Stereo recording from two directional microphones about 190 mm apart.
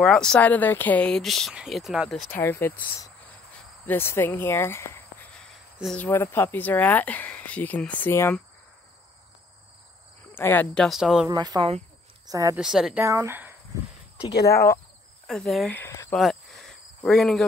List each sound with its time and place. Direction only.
0.0 s speech: 5° left (ahead or behind)
2.3 s speech: 10° left (ahead or behind)
3.8 s speech: 10° left (ahead or behind)
10.3 s speech: 10° left (ahead or behind)
11.2 s a woman's voice: 20° right (ahead or behind)
12.5 s speech: centre (ahead or behind)
13.0 s speech: 15° right (ahead or behind)
14.3 s speech: 60° left (ahead or behind)
15.2 s speech: centre (ahead or behind)
16.2 s cricket: centre (ahead or behind)